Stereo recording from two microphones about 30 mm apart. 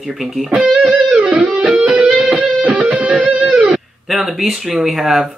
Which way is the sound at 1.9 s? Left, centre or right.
Right.